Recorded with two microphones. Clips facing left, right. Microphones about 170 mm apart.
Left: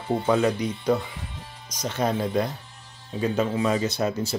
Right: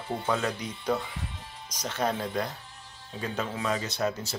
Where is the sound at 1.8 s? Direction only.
10° left (ahead or behind).